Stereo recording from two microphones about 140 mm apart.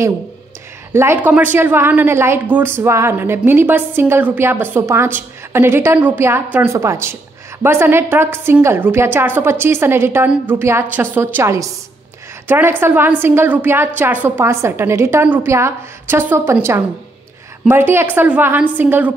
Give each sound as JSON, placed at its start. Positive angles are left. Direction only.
{"t": 0.9, "sound": "a woman's voice", "side_deg": -15}